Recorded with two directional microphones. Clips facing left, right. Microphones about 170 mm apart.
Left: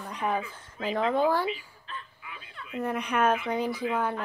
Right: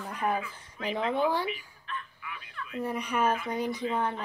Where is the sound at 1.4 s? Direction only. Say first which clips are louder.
Left 3 dB; 30° left (ahead or behind).